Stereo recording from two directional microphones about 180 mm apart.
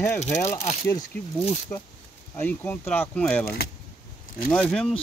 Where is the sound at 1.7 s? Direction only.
15° left (ahead or behind).